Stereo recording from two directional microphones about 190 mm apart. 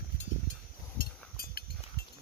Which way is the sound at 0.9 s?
50° left (ahead or behind).